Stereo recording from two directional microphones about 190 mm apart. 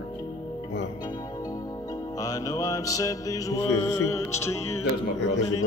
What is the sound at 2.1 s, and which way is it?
Music, 20° left (ahead or behind).